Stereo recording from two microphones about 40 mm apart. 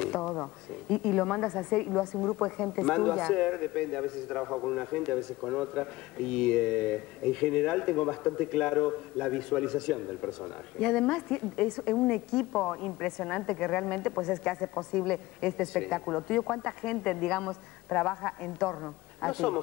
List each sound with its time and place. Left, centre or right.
0.0 s a woman's voice: centre